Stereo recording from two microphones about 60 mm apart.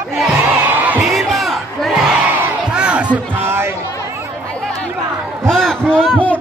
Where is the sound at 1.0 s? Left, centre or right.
Centre.